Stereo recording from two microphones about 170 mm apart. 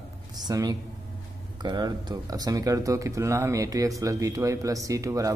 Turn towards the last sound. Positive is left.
turn(degrees=-20)  # may be behind; listen again after turning